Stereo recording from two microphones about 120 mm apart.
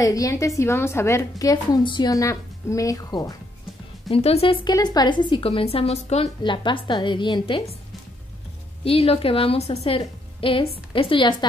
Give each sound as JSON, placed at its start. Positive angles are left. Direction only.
{"t": 0.0, "sound": "a woman's voice", "side_deg": 30}
{"t": 4.1, "sound": "a woman's voice", "side_deg": 55}
{"t": 4.6, "sound": "a woman's voice", "side_deg": 35}
{"t": 6.4, "sound": "a woman's voice", "side_deg": 40}
{"t": 8.8, "sound": "a woman's voice", "side_deg": 55}